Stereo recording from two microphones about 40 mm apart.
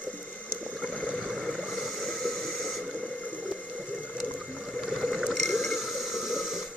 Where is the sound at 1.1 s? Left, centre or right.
Centre.